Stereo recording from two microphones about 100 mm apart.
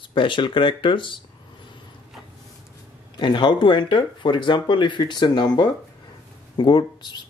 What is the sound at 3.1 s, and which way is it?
Speech, 50° left (ahead or behind).